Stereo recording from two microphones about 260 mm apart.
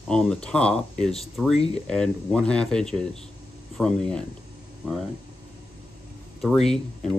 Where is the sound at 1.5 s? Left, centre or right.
Left.